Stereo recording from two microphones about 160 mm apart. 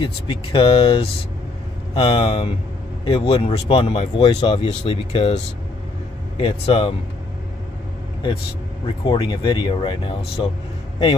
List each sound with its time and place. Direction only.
0.0 s speech: 30° left (ahead or behind)
8.8 s speech: 30° left (ahead or behind)